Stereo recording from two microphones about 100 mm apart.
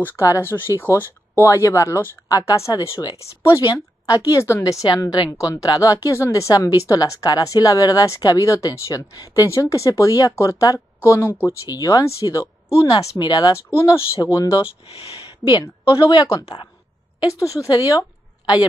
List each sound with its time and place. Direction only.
0.0 s a woman's voice: 25° left (ahead or behind)
4.8 s a woman's voice: 40° left (ahead or behind)
11.7 s a woman's voice: 35° left (ahead or behind)
15.0 s speech: 60° left (ahead or behind)
15.9 s a woman's voice: 50° left (ahead or behind)